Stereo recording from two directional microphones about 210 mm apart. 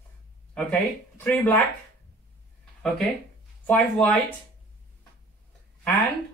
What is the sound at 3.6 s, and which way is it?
Speech, 5° left (ahead or behind).